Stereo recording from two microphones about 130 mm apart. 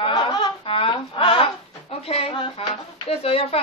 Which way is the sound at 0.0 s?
40° left (ahead or behind).